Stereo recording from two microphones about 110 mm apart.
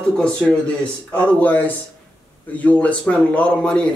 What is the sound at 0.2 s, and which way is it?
Speech, 5° left (ahead or behind).